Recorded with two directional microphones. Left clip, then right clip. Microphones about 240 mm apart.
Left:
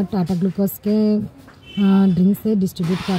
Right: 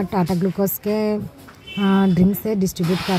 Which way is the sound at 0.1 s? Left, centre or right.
Right.